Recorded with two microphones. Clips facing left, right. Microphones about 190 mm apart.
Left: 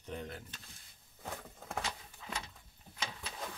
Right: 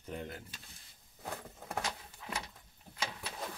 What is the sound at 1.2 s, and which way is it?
Vehicle, 5° right (ahead or behind).